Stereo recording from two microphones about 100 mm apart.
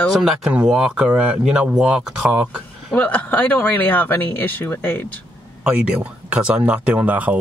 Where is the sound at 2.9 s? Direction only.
15° left (ahead or behind).